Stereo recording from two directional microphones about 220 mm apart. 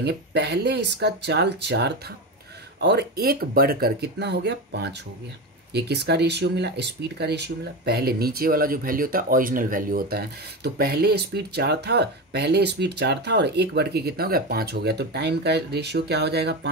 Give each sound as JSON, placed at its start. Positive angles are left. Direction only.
{"t": 0.0, "sound": "speech", "side_deg": -50}